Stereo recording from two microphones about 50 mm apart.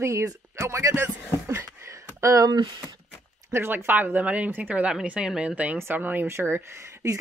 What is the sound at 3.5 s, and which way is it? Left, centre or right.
Speech, right.